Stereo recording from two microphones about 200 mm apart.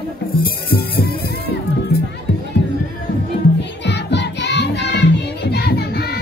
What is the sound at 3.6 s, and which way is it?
Music, 60° left (ahead or behind).